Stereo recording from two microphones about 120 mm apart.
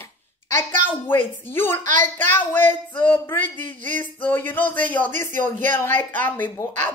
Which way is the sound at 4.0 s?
15° left (ahead or behind).